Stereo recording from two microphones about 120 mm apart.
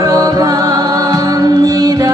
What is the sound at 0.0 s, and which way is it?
Music, 30° right (ahead or behind).